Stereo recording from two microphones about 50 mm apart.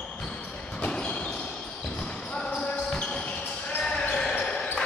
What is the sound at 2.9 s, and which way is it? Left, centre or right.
Basketball bounce, centre.